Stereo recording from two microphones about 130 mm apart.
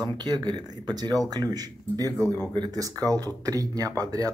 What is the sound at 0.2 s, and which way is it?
Speech, 30° right (ahead or behind).